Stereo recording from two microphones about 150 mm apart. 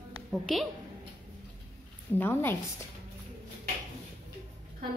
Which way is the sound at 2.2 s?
15° left (ahead or behind).